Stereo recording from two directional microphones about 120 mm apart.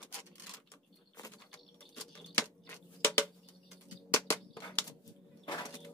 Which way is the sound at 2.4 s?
15° left (ahead or behind).